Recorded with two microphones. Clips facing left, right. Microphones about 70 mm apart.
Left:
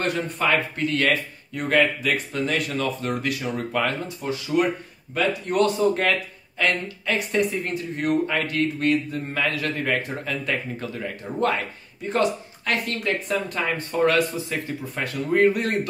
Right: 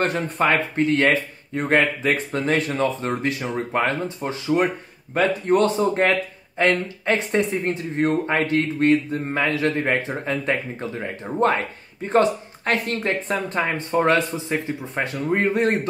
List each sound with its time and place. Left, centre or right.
0.0 s speech: right